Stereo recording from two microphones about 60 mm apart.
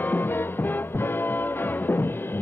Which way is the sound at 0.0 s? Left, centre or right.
Left.